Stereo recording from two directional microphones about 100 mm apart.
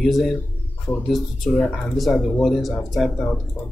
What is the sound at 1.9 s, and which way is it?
Speech, 5° left (ahead or behind).